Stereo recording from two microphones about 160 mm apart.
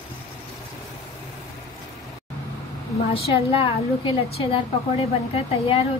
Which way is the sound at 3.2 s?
35° left (ahead or behind).